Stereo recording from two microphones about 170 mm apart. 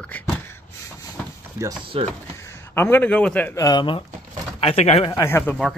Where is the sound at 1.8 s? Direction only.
30° right (ahead or behind).